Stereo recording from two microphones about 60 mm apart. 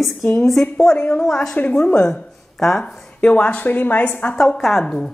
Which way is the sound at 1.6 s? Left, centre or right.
Left.